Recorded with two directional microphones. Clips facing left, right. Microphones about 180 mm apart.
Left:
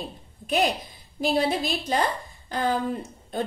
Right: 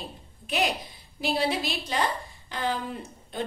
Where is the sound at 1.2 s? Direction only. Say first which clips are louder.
Left 3 dB; 45° left (ahead or behind).